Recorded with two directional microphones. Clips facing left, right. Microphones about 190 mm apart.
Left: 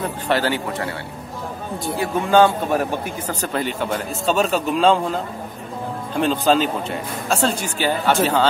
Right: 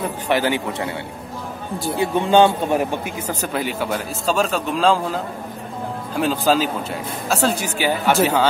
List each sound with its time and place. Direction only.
0.3 s speech: 15° right (ahead or behind)
2.0 s speech: 20° right (ahead or behind)